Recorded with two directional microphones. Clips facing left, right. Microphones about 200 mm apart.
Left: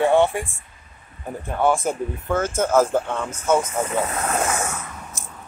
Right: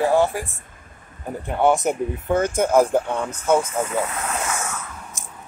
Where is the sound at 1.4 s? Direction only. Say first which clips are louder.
Right 2 dB; 20° right (ahead or behind).